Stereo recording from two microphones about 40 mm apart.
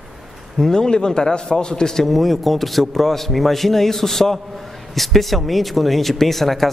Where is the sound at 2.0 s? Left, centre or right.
Centre.